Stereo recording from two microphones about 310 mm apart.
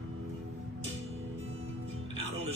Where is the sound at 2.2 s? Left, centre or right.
Centre.